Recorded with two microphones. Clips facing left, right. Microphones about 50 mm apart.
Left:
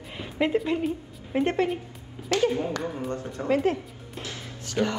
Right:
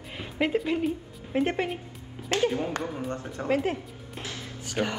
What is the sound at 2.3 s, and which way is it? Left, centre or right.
Speech, right.